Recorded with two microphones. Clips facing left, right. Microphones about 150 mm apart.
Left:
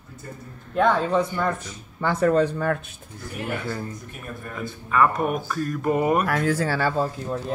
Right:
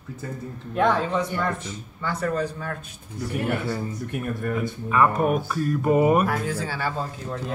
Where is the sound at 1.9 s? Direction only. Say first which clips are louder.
Left 6 dB; 50° left (ahead or behind).